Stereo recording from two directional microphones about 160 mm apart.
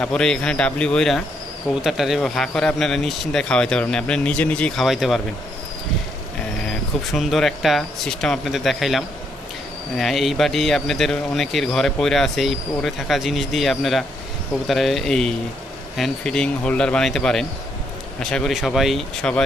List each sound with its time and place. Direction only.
0.0 s speech: 5° left (ahead or behind)
6.7 s speech: centre (ahead or behind)